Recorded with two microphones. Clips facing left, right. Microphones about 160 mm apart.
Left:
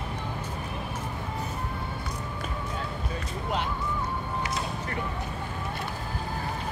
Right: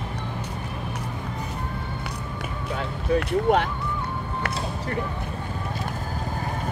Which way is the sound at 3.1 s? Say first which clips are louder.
Right 15 dB; 70° right (ahead or behind).